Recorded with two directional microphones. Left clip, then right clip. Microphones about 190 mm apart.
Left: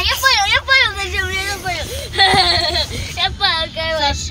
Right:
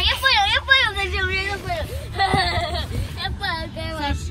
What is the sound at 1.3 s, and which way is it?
Speech, 30° left (ahead or behind).